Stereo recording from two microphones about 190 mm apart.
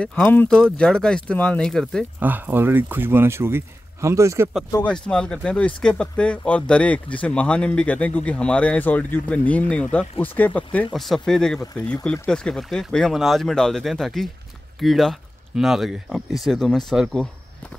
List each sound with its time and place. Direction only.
0.0 s speech: 5° left (ahead or behind)
2.1 s speech: 10° right (ahead or behind)
4.6 s speech: 15° left (ahead or behind)
4.9 s speech: 5° left (ahead or behind)